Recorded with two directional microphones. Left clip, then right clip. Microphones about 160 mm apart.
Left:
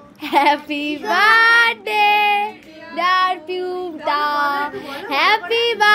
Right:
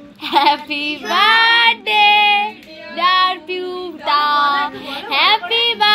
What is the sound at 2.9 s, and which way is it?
Child singing, 35° left (ahead or behind).